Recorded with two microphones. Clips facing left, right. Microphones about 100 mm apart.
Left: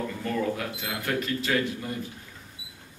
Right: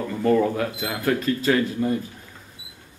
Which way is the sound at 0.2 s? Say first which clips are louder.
Right 11 dB; 45° right (ahead or behind).